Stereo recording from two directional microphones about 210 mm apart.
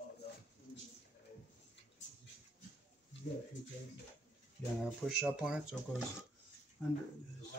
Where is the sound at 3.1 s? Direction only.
60° left (ahead or behind).